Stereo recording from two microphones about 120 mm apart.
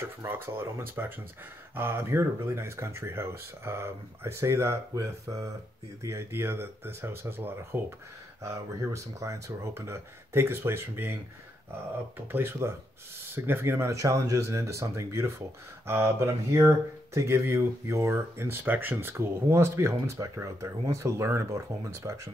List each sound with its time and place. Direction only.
0.0 s speech: 20° right (ahead or behind)
12.3 s speech: 20° right (ahead or behind)